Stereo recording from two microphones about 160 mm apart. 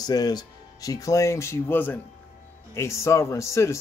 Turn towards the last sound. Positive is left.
turn(degrees=20)  # may be behind; listen again after turning